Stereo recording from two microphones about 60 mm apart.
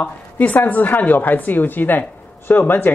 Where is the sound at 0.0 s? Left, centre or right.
Left.